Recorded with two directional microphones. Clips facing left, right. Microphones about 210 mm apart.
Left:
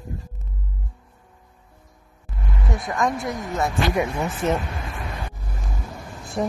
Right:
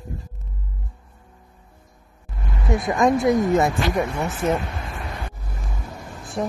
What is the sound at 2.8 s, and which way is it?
Speech, 20° right (ahead or behind).